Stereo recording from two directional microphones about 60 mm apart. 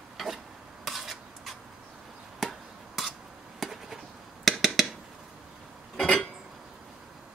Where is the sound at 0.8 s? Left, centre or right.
Centre.